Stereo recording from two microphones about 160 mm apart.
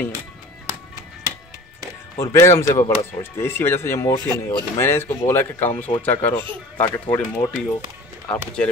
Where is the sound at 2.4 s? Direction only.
15° left (ahead or behind).